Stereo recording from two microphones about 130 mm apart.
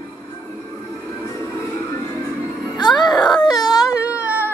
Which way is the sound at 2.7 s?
35° left (ahead or behind).